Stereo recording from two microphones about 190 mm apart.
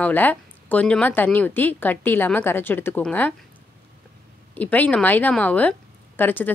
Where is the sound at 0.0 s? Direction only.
10° left (ahead or behind).